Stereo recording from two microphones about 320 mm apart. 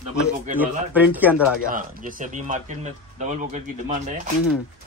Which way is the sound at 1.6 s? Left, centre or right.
Right.